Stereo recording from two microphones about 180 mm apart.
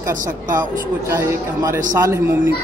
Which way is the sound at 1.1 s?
15° right (ahead or behind).